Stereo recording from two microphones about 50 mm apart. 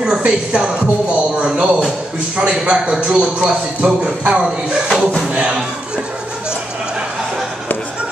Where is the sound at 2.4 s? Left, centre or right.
Right.